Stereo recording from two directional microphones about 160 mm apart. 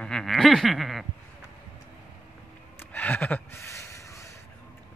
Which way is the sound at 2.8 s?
10° left (ahead or behind).